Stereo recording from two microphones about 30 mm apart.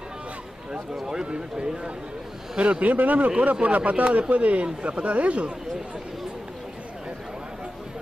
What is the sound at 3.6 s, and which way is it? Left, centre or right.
Speech, right.